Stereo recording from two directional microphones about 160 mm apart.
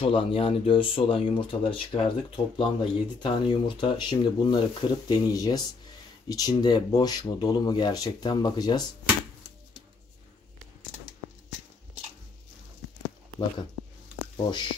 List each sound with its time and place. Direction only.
0.0 s speech: 35° left (ahead or behind)
14.3 s speech: 30° left (ahead or behind)